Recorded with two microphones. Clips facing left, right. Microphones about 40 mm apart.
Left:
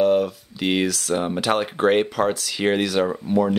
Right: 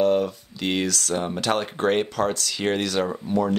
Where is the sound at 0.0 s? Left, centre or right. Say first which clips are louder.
Left 2 dB; centre.